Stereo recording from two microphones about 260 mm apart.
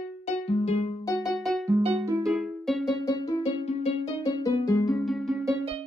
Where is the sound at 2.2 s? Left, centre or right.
Centre.